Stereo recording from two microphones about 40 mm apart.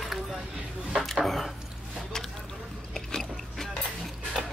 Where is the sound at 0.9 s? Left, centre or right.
Centre.